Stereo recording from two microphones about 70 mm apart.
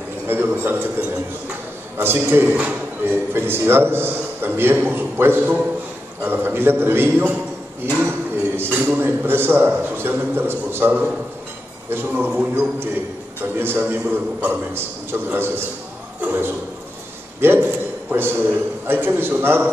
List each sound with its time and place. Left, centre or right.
0.6 s a man's voice: right
2.5 s speech: centre
3.3 s a man's voice: right
17.4 s a sound: right
18.9 s a man's voice: right